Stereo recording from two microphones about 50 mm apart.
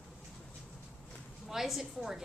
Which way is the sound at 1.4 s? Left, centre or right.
Centre.